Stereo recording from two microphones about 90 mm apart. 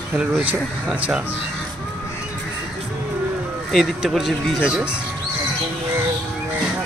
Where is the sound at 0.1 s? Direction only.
20° right (ahead or behind).